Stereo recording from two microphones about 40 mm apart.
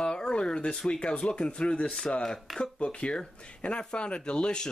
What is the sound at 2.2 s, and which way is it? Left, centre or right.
Speech, centre.